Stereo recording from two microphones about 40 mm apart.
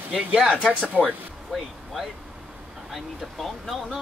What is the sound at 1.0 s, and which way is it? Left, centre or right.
Speech, right.